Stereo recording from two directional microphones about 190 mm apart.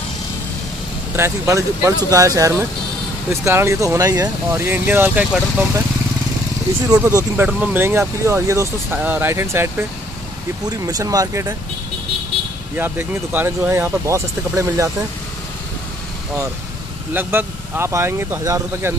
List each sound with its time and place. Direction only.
1.1 s speech: 15° right (ahead or behind)
6.9 s speech: 15° right (ahead or behind)
12.7 s speech: 10° right (ahead or behind)
17.1 s speech: 10° right (ahead or behind)